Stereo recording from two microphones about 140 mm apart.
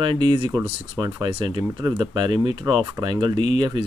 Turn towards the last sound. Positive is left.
turn(degrees=-35)  # may be behind; listen again after turning